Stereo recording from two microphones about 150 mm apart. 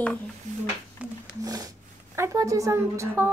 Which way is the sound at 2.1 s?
20° right (ahead or behind).